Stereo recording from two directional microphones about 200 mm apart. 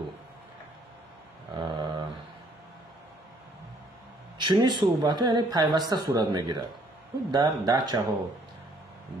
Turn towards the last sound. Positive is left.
turn(degrees=-20)  # may be behind; listen again after turning